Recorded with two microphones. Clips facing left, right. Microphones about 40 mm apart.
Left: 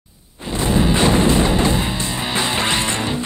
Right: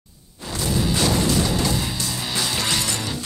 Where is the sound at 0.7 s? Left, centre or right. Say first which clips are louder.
Left 6 dB; left.